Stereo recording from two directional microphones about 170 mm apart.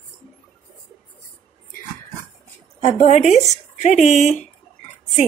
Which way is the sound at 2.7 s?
35° left (ahead or behind).